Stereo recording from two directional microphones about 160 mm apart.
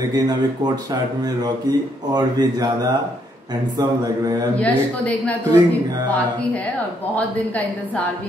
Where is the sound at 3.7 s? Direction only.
25° right (ahead or behind).